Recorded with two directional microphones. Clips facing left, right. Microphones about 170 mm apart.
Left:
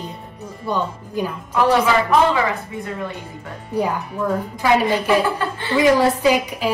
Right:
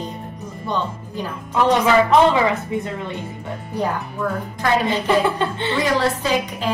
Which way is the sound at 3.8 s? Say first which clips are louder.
Left 2 dB; 10° left (ahead or behind).